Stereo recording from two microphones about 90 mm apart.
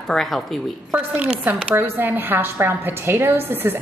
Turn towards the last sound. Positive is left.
turn(degrees=-25)  # may be behind; listen again after turning